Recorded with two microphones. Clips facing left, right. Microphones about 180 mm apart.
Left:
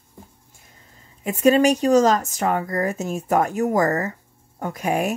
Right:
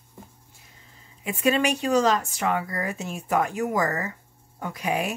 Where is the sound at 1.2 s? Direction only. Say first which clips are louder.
Left 7 dB; 40° left (ahead or behind).